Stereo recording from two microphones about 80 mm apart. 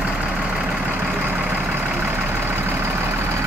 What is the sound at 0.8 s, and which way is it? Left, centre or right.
Vehicle, centre.